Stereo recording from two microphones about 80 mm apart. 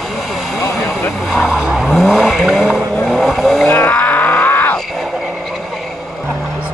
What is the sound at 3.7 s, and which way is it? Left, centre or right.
Groan, left.